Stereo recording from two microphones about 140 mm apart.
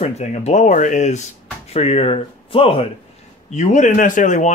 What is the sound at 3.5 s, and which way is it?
Speech, 60° left (ahead or behind).